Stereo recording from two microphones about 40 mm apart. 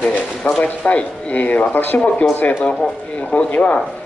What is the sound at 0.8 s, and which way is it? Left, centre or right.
Speech, left.